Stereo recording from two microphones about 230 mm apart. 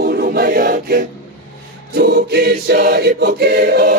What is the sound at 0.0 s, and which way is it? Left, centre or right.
Choir, right.